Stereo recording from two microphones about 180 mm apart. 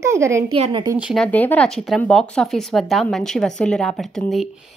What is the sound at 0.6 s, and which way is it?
Speech, 30° right (ahead or behind).